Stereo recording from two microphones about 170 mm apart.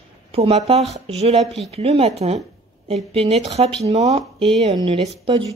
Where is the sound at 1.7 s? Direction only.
35° right (ahead or behind).